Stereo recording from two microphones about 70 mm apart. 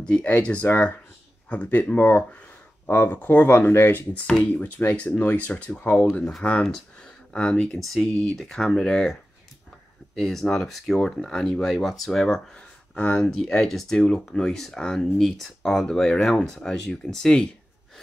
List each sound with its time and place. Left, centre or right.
0.0 s speech: centre; by 4.0 s left
4.3 s speech: left
12.9 s speech: left
13.2 s speech: centre